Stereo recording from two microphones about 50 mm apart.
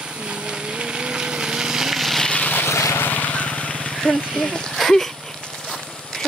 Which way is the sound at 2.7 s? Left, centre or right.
Left.